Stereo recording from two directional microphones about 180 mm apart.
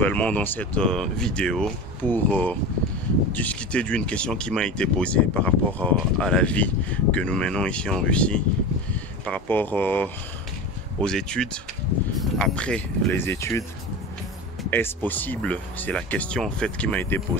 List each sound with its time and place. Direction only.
0.0 s speech: 10° left (ahead or behind)
14.7 s speech: 10° left (ahead or behind)